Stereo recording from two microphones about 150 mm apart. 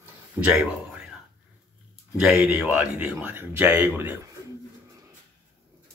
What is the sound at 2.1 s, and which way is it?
Speech, 10° right (ahead or behind).